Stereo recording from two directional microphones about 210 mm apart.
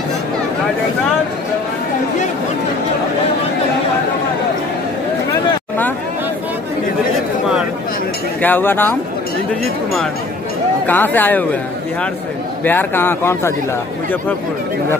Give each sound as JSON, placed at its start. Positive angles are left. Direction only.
{"t": 8.4, "sound": "speech", "side_deg": 10}
{"t": 10.9, "sound": "speech", "side_deg": 10}
{"t": 12.6, "sound": "speech", "side_deg": 10}